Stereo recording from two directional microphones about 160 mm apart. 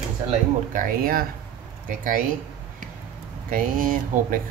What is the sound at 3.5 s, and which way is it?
Speech, 55° right (ahead or behind).